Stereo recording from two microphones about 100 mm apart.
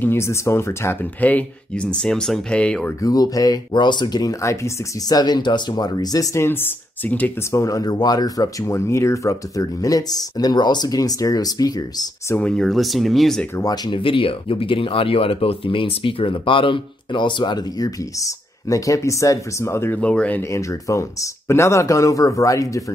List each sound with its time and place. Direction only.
0.0 s speech: 25° left (ahead or behind)
3.0 s speech: 35° left (ahead or behind)
5.2 s speech: 45° left (ahead or behind)
6.4 s speech: 20° left (ahead or behind)
7.5 s speech: 35° left (ahead or behind)
12.4 s speech: 5° left (ahead or behind)
13.6 s speech: 40° left (ahead or behind)
13.9 s speech: 60° left (ahead or behind); by 20.0 s 25° left (ahead or behind)
20.0 s speech: 10° left (ahead or behind)
20.5 s speech: 30° left (ahead or behind)